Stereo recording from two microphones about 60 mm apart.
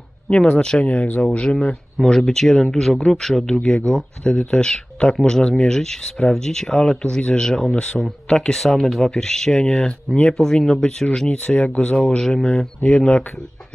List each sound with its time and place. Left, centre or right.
0.3 s speech: centre
2.0 s speech: centre